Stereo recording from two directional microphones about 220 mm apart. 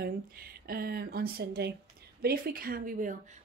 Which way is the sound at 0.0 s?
45° right (ahead or behind).